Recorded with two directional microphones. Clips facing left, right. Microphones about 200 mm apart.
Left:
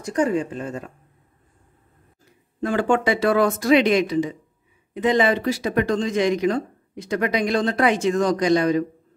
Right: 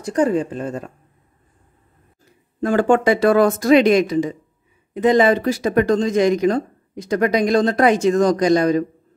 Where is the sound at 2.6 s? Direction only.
45° right (ahead or behind).